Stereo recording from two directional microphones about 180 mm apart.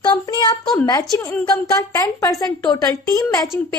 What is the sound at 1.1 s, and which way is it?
A woman's voice, 20° left (ahead or behind).